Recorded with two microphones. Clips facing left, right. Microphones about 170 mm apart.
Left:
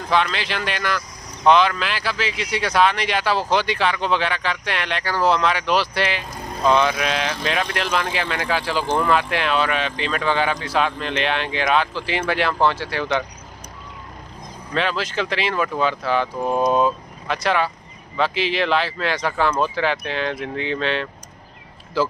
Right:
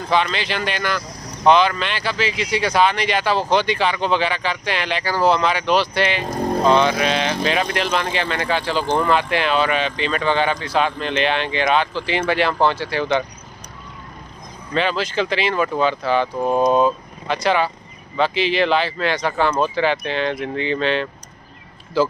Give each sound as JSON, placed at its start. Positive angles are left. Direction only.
{"t": 0.1, "sound": "speech", "side_deg": 0}
{"t": 6.2, "sound": "vehicle", "side_deg": -50}
{"t": 6.7, "sound": "speech", "side_deg": 0}
{"t": 14.7, "sound": "speech", "side_deg": 0}